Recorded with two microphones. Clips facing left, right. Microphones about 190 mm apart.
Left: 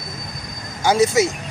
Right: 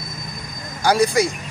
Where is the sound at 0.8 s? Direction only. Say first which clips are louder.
Left 1 dB; 20° left (ahead or behind).